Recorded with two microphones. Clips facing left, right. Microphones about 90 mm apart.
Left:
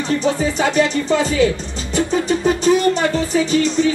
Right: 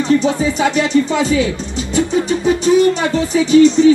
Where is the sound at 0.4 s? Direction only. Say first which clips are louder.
Right 1 dB; 40° left (ahead or behind).